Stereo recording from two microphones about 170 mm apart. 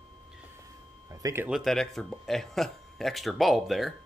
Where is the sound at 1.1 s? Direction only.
20° right (ahead or behind).